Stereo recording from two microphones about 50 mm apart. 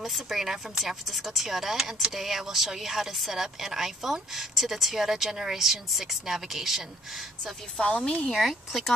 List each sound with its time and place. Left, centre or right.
0.0 s speech: centre
7.7 s speech: centre
8.3 s speech: centre